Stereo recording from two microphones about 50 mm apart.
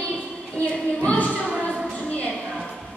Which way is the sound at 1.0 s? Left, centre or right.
Left.